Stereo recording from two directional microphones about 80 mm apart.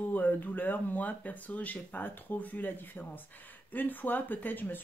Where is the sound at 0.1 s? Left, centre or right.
Left.